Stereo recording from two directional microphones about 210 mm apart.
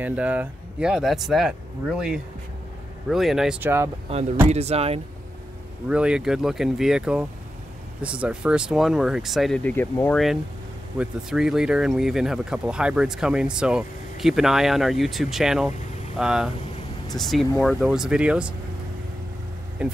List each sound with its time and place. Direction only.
0.0 s speech: 5° right (ahead or behind)
4.5 s speech: 30° right (ahead or behind)
5.9 s speech: 5° right (ahead or behind)
11.0 s speech: 5° right (ahead or behind)
19.8 s speech: 5° right (ahead or behind)